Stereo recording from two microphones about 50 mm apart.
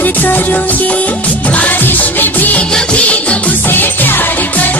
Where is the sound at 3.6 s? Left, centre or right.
Left.